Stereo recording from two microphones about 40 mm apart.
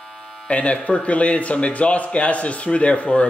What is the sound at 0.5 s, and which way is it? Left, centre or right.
Speech, left.